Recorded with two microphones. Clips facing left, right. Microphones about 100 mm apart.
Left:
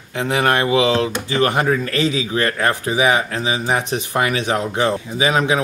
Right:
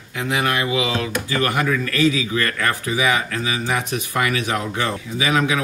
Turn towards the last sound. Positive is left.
turn(degrees=25)  # may be behind; listen again after turning